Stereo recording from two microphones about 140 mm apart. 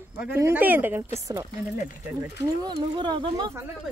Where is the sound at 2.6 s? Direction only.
30° right (ahead or behind).